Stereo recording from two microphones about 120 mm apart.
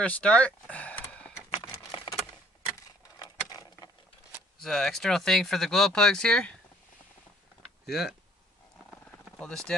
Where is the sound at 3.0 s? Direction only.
30° left (ahead or behind).